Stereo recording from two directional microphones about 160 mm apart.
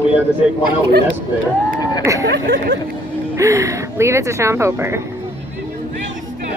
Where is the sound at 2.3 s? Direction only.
90° right.